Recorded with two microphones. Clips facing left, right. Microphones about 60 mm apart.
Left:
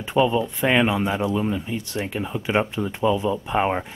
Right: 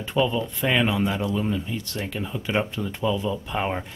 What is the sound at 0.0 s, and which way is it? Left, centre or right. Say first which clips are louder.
Speech: left 4 dB; centre.